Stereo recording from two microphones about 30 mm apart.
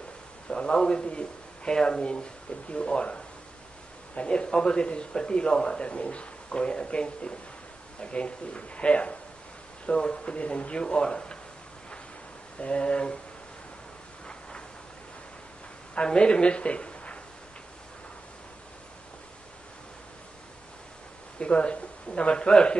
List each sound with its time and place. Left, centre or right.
0.6 s a man's voice: left
2.7 s a man's voice: left
12.5 s a man's voice: left
16.0 s a woman's voice: left
21.4 s speech: left